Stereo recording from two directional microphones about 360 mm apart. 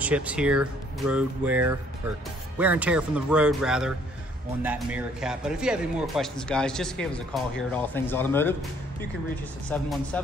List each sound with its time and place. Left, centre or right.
0.0 s speech: centre
9.7 s speech: centre